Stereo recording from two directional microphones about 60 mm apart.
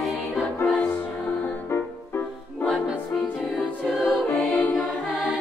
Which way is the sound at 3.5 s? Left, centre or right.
Centre.